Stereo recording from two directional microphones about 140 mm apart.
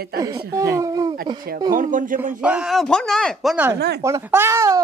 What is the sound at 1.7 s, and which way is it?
Speech, 75° right (ahead or behind).